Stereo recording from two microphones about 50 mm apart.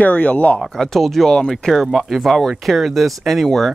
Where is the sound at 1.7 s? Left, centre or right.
Centre.